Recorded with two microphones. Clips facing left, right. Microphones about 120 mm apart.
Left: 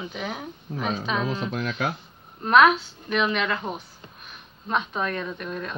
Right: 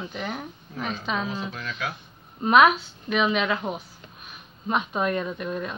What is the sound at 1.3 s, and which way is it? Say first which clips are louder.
Speech: left 4 dB; 60° left (ahead or behind).